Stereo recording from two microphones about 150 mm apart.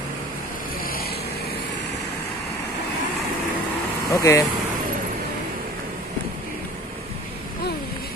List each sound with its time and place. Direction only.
0.8 s vehicle: 80° left
4.1 s speech: 20° left (ahead or behind)